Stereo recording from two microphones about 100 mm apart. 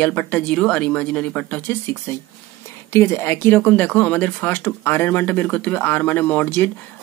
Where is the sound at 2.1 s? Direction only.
25° left (ahead or behind).